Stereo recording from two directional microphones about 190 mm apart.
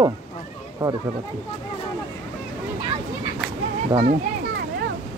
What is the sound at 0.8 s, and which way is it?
Speech, 15° right (ahead or behind).